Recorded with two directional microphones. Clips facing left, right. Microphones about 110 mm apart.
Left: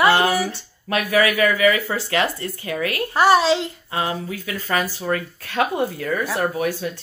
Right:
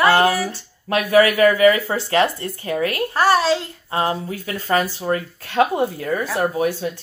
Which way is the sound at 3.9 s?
35° right (ahead or behind).